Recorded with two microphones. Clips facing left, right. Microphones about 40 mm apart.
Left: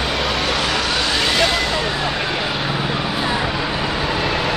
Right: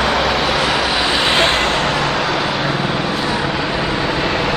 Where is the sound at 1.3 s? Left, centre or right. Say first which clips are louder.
Right 3 dB; right.